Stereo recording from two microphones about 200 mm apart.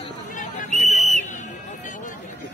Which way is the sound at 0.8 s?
35° left (ahead or behind).